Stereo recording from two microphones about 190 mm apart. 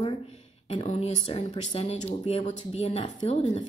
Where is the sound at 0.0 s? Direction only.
30° left (ahead or behind).